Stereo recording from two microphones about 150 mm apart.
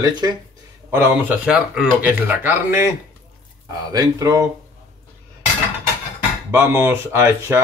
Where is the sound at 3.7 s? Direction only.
25° right (ahead or behind).